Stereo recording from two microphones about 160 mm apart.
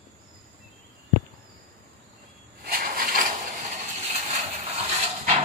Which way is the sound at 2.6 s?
65° right (ahead or behind).